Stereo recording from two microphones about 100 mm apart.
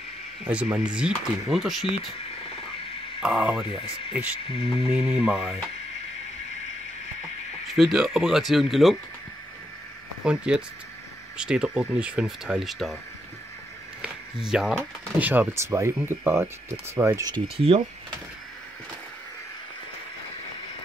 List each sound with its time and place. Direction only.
0.5 s speech: 10° right (ahead or behind)
3.2 s speech: 10° right (ahead or behind)
4.5 s a sound: 70° left (ahead or behind)
4.8 s speech: 10° right (ahead or behind)
7.6 s speech: centre (ahead or behind)
10.2 s speech: 10° right (ahead or behind)
14.0 s a sound: 5° right (ahead or behind)
15.1 s speech: 15° right (ahead or behind)
15.5 s speech: 25° right (ahead or behind)